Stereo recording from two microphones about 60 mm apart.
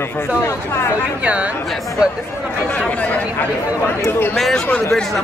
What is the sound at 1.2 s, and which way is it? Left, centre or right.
Speech, centre.